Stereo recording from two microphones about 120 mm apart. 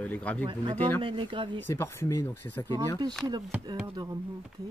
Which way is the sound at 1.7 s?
20° left (ahead or behind).